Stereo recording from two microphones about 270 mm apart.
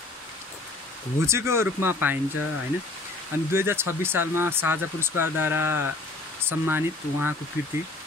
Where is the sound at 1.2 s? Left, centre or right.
Centre.